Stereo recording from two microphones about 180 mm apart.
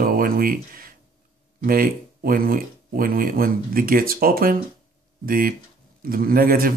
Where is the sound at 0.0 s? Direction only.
50° right (ahead or behind).